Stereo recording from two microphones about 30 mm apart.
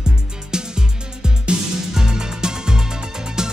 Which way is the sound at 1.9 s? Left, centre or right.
Right.